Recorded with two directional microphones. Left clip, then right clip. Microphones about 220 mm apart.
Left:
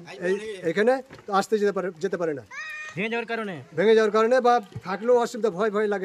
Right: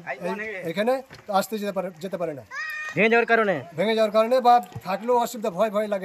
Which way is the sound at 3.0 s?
20° right (ahead or behind).